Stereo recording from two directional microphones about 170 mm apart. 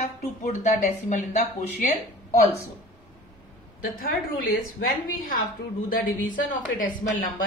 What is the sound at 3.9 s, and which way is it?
A woman's voice, 55° left (ahead or behind).